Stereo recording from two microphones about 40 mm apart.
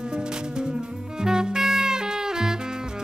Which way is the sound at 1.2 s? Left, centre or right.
Centre.